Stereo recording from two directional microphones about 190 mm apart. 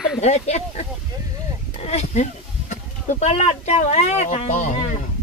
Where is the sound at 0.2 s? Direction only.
35° left (ahead or behind).